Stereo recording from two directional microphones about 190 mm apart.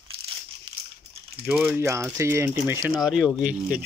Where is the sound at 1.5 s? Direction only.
10° right (ahead or behind).